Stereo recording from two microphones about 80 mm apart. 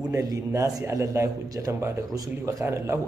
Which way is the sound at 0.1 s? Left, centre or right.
Right.